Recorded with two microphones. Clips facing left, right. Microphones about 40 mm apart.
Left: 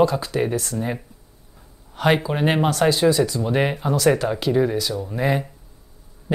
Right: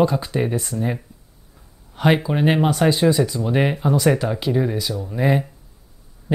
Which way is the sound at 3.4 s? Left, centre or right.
Centre.